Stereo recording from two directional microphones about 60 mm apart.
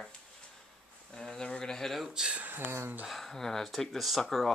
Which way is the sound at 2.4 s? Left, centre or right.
Right.